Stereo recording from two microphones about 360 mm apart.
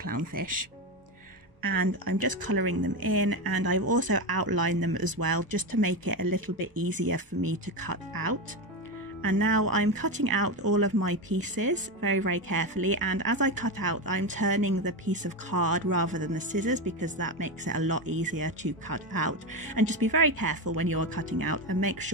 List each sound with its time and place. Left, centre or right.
0.0 s speech: right
16.1 s speech: right
17.2 s speech: right